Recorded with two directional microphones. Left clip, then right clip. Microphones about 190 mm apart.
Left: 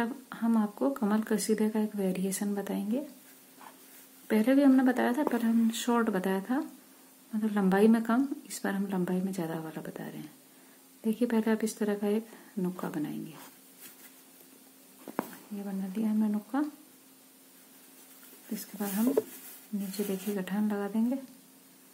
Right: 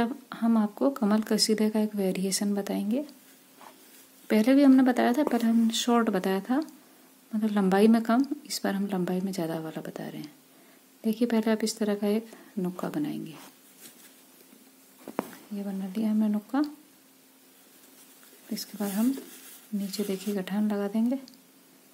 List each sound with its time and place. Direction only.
0.0 s speech: 30° right (ahead or behind)
4.3 s a woman's voice: 30° right (ahead or behind)
15.1 s a sound: 5° right (ahead or behind)
15.6 s speech: 30° right (ahead or behind)
18.5 s speech: 30° right (ahead or behind)
20.3 s a woman's voice: 30° right (ahead or behind)